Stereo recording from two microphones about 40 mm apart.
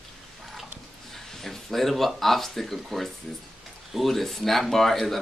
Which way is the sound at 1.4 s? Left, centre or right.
Centre.